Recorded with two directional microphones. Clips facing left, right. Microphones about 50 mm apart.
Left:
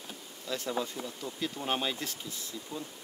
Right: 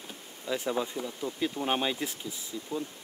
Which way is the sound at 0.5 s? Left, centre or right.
Centre.